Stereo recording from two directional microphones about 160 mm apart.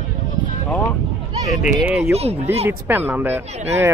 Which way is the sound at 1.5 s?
5° right (ahead or behind).